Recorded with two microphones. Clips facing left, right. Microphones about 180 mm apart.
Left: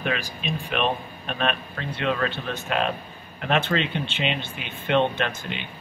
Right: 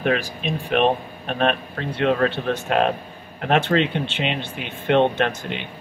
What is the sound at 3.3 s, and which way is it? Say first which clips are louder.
A man's voice: right 5 dB; 50° right (ahead or behind).